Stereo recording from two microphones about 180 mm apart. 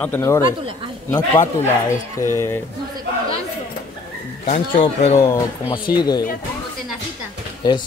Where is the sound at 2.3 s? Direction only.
15° left (ahead or behind).